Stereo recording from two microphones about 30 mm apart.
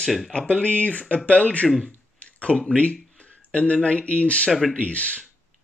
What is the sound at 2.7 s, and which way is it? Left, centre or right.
Speech, left.